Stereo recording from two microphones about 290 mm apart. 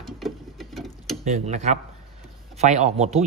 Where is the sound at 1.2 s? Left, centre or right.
Right.